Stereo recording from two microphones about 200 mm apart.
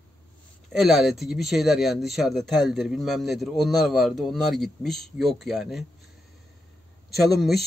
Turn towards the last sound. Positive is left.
turn(degrees=0)  # may be behind; listen again after turning